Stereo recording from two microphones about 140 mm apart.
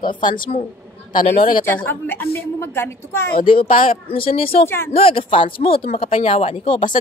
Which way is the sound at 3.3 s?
40° left (ahead or behind).